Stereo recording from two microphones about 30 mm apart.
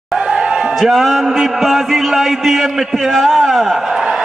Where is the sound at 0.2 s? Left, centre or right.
Right.